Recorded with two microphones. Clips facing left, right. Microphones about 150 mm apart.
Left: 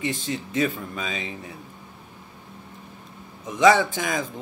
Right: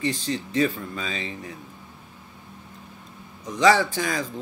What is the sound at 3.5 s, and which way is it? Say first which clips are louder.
Speech: left 1 dB; 20° left (ahead or behind).